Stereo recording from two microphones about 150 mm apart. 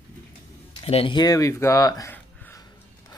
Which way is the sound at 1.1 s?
25° left (ahead or behind).